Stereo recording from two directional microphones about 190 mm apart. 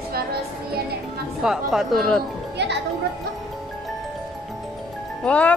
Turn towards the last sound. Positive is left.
turn(degrees=5)  # may be behind; listen again after turning